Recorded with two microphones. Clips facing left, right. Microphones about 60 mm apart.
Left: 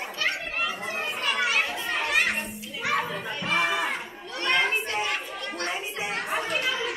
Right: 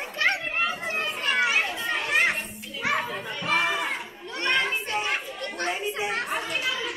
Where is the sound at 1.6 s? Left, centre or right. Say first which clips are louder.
Even; centre.